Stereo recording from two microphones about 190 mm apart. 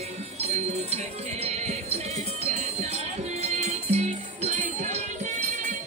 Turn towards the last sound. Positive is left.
turn(degrees=-40)  # may be behind; listen again after turning